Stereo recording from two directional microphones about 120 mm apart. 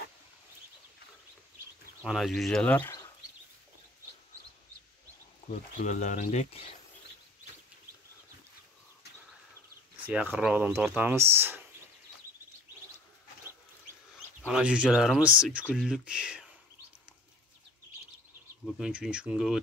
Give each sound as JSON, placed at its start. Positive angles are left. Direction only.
{"t": 2.0, "sound": "speech", "side_deg": 0}
{"t": 5.8, "sound": "speech", "side_deg": 90}
{"t": 10.0, "sound": "speech", "side_deg": -15}
{"t": 14.4, "sound": "speech", "side_deg": -5}
{"t": 18.7, "sound": "speech", "side_deg": -5}